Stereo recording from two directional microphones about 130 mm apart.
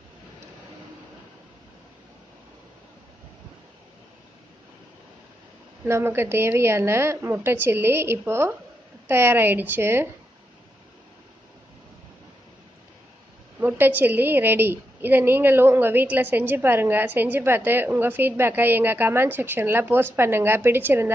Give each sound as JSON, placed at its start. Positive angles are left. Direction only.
{"t": 5.9, "sound": "a woman's voice", "side_deg": -20}
{"t": 13.6, "sound": "a woman's voice", "side_deg": -15}